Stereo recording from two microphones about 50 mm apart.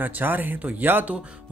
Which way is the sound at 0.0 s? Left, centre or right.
Right.